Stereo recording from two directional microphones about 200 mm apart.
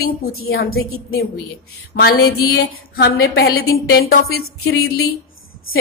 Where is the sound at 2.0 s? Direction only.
50° left (ahead or behind).